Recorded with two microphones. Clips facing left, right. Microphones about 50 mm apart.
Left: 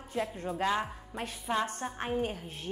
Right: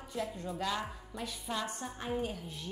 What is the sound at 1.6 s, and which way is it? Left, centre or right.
Speech, left.